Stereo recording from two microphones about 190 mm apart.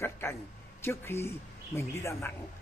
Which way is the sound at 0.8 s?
15° left (ahead or behind).